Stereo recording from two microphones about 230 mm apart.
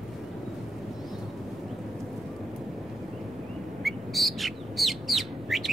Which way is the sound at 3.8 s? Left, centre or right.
Centre.